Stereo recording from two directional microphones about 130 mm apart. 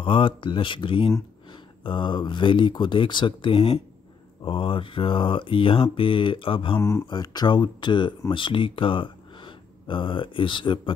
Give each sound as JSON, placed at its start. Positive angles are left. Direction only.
{"t": 0.0, "sound": "speech", "side_deg": 40}
{"t": 6.8, "sound": "speech", "side_deg": 20}
{"t": 7.1, "sound": "speech", "side_deg": 35}